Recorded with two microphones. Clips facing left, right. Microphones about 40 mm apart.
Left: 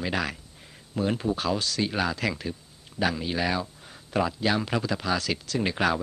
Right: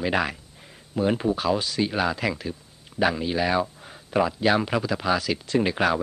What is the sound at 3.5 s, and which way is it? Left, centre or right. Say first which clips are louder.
Speech: right 5 dB; centre.